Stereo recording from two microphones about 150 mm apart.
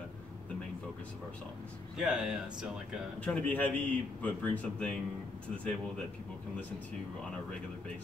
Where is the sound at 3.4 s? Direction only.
10° left (ahead or behind).